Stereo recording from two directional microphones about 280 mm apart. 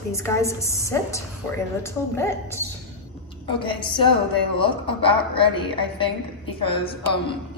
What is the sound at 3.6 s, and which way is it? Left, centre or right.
A man's voice, centre.